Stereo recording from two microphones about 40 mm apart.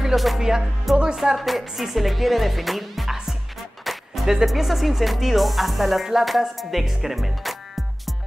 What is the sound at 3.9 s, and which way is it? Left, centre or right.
Music, centre.